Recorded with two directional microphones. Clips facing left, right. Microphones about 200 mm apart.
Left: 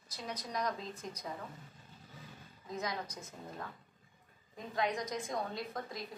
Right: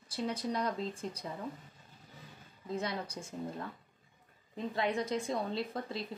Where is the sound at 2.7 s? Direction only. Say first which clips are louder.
Right 3 dB; 30° right (ahead or behind).